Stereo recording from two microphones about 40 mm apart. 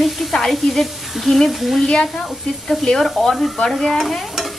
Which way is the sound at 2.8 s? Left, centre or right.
Centre.